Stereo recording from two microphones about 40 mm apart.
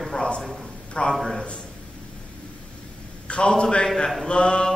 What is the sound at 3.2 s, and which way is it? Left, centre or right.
A man's voice, left.